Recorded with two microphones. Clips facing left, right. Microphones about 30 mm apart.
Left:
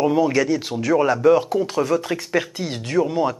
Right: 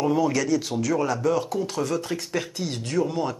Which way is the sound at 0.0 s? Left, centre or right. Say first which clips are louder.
Left 4 dB; left.